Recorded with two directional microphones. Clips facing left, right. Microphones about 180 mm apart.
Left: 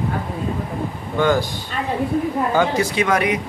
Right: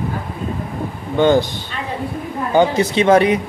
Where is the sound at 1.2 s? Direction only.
25° right (ahead or behind).